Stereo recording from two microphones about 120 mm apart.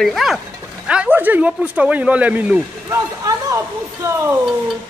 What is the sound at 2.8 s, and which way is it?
A woman's voice, 25° right (ahead or behind).